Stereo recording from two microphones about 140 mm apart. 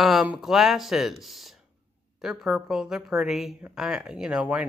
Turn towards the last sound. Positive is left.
turn(degrees=-10)  # may be behind; listen again after turning